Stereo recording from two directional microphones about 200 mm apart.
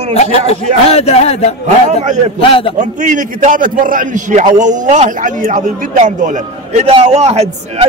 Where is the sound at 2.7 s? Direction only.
40° right (ahead or behind).